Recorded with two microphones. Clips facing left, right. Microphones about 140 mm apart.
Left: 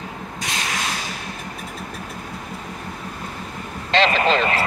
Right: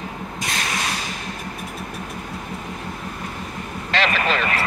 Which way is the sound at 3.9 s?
25° left (ahead or behind).